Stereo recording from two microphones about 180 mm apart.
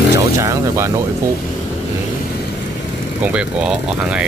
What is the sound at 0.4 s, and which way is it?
Speech, 15° right (ahead or behind).